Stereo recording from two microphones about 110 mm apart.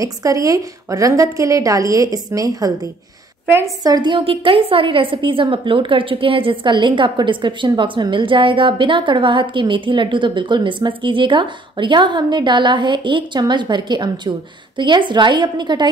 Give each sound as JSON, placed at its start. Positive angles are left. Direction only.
{"t": 0.0, "sound": "a woman's voice", "side_deg": -30}
{"t": 3.8, "sound": "a woman's voice", "side_deg": -40}
{"t": 4.2, "sound": "a woman's voice", "side_deg": -60}